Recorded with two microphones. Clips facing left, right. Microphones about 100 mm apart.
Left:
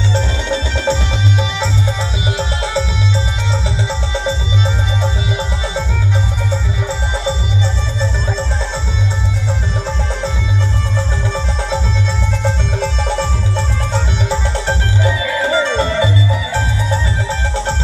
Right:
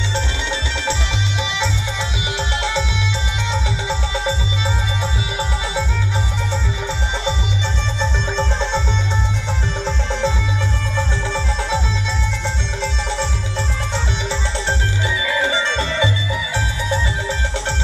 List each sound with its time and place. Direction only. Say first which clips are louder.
0.1 s music: left 5 dB; 40° left (ahead or behind)
2.3 s music: left 2 dB; 35° left (ahead or behind)
14.3 s music: left 5 dB; 45° left (ahead or behind)